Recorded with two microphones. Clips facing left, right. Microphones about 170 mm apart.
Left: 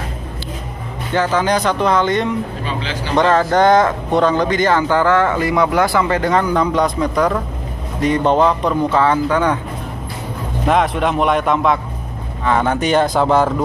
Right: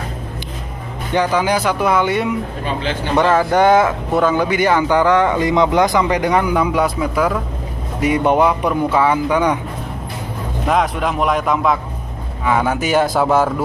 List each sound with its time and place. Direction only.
1.1 s speech: 15° right (ahead or behind)
2.6 s speech: 50° right (ahead or behind)
3.2 s speech: 10° right (ahead or behind)
10.7 s a man's voice: centre (ahead or behind)